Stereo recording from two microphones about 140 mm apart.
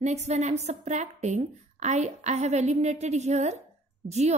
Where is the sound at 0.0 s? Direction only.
55° right (ahead or behind).